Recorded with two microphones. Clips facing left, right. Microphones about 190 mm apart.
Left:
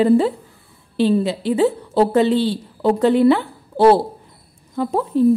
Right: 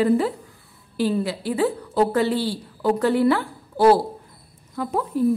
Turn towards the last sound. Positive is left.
turn(degrees=25)  # may be behind; listen again after turning